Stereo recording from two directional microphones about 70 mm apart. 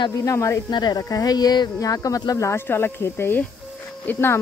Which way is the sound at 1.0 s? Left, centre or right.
Left.